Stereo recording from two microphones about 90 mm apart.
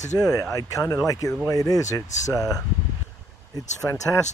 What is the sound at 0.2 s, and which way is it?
Speech, 40° left (ahead or behind).